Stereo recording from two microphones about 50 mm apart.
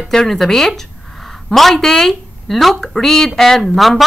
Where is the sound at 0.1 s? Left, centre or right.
Centre.